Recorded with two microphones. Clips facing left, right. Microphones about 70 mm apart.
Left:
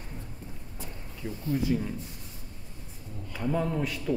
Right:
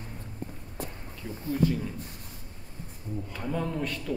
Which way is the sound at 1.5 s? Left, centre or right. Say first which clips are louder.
Right 1 dB; centre.